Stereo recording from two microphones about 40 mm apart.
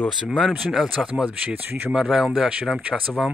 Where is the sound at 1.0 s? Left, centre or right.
Right.